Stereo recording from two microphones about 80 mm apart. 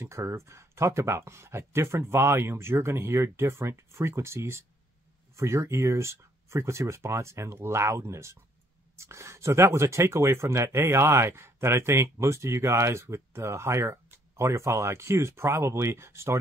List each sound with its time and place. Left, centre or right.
0.0 s speech: right